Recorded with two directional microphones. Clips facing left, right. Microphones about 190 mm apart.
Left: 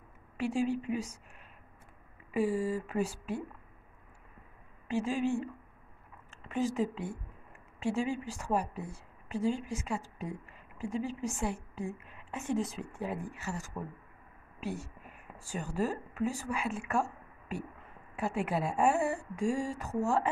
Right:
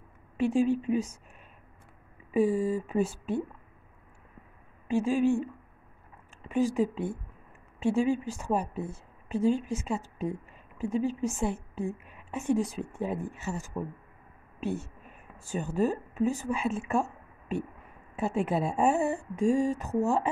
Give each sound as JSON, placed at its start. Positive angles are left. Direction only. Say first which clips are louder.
{"t": 0.4, "sound": "a woman's voice", "louder": "right 6 dB", "side_deg": -20}
{"t": 2.3, "sound": "a woman's voice", "louder": "right 5 dB", "side_deg": -20}
{"t": 4.8, "sound": "a woman's voice", "louder": "right 6 dB", "side_deg": -15}
{"t": 6.5, "sound": "a woman's voice", "louder": "right 5 dB", "side_deg": -15}